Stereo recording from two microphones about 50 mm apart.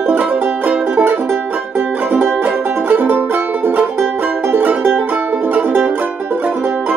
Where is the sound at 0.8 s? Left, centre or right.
Right.